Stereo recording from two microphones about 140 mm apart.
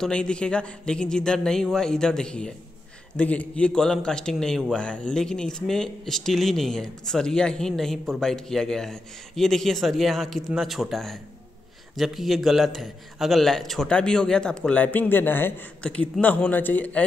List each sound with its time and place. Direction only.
0.0 s a man's voice: 5° left (ahead or behind)